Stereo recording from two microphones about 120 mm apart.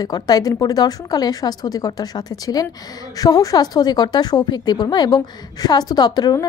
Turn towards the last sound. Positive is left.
turn(degrees=35)  # may be behind; listen again after turning